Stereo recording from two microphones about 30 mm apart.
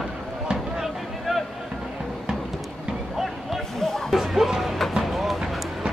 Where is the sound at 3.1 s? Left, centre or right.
Centre.